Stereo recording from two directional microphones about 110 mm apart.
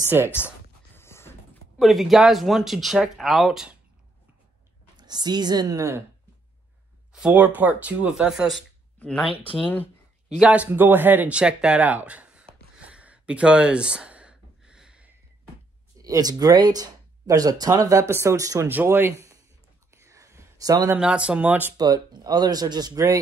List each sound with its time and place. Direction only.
0.2 s speech: 20° right (ahead or behind)
0.9 s a sound: 20° left (ahead or behind)
1.8 s speech: centre (ahead or behind)
4.9 s speech: 40° right (ahead or behind)
7.1 s speech: 10° right (ahead or behind)
9.6 s speech: 15° left (ahead or behind)
10.3 s a sound: 10° right (ahead or behind)
16.0 s speech: 35° right (ahead or behind)
18.7 s speech: 15° right (ahead or behind)
19.9 s whispering: 30° right (ahead or behind)
21.0 s speech: 10° right (ahead or behind)
21.7 s speech: 40° right (ahead or behind)